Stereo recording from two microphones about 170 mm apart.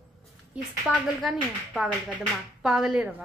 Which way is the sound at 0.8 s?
Centre (ahead or behind).